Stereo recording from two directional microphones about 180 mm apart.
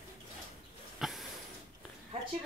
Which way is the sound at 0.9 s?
Centre (ahead or behind).